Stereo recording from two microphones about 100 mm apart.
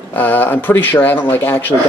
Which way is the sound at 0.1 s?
20° left (ahead or behind).